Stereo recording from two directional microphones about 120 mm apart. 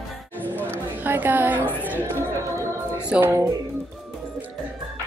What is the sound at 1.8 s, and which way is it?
Music, 20° right (ahead or behind).